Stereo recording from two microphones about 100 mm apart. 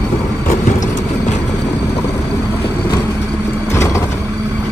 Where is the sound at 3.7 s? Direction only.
30° left (ahead or behind).